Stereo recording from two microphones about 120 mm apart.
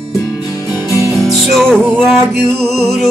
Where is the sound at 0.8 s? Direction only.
25° right (ahead or behind).